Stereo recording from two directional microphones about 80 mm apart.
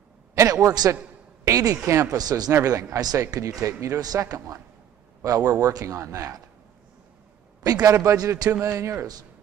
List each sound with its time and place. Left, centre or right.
0.3 s a man's voice: right
7.6 s speech: right
8.0 s speech: right
8.6 s speech: right